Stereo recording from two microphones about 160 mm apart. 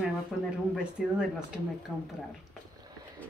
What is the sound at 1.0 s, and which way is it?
Speech, centre (ahead or behind).